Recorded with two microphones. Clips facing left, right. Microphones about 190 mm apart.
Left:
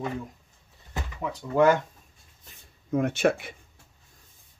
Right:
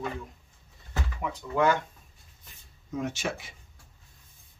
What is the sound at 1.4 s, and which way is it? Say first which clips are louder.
Speech: left 5 dB; 40° left (ahead or behind).